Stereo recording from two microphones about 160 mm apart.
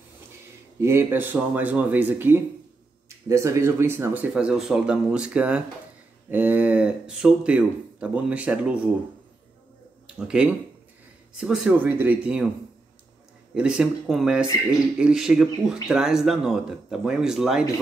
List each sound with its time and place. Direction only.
0.7 s speech: 15° right (ahead or behind)
10.0 s speech: 5° right (ahead or behind)
13.6 s speech: 5° right (ahead or behind)